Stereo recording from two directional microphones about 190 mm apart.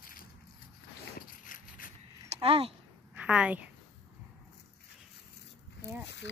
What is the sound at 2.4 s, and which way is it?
Speech, 30° right (ahead or behind).